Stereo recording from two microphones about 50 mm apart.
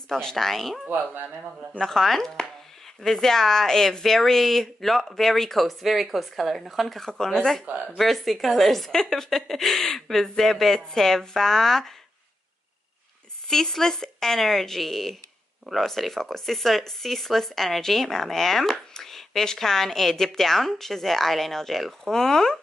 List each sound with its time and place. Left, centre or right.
0.1 s speech: centre
0.8 s speech: right
1.8 s speech: centre
7.0 s speech: centre
7.6 s speech: right
8.0 s speech: centre
13.5 s speech: centre